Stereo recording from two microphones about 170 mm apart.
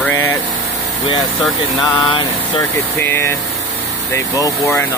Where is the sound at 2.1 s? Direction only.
30° left (ahead or behind).